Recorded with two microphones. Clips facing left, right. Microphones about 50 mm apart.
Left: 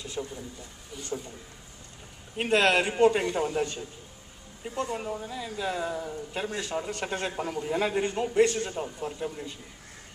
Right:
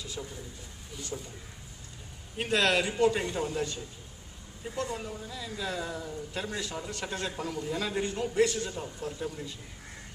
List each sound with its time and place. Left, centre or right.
0.0 s a sound: centre
2.3 s a man's voice: left
4.6 s speech: centre
4.9 s a man's voice: left
8.5 s a man's voice: left
8.7 s a man's voice: left